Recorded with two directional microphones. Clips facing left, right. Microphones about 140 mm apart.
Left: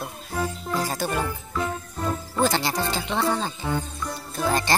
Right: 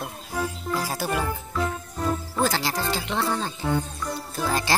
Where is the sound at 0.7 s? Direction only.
5° right (ahead or behind).